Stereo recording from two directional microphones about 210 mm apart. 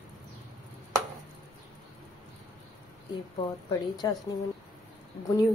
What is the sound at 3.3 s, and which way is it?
Speech, 20° left (ahead or behind).